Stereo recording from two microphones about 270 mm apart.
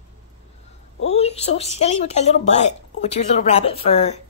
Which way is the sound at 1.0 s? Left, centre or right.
Left.